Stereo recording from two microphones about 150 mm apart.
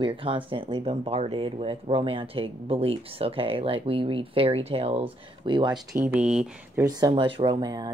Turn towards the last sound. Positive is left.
turn(degrees=-25)  # may be behind; listen again after turning